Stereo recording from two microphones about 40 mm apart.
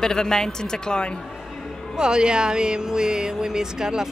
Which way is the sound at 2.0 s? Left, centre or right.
Right.